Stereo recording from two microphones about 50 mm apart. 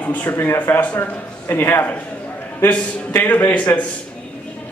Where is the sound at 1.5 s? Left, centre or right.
Left.